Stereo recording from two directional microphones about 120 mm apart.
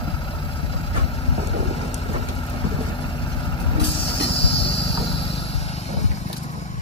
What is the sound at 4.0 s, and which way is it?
Vehicle, 50° left (ahead or behind).